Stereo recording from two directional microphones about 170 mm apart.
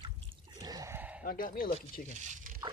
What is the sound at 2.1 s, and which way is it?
Speech, 45° right (ahead or behind).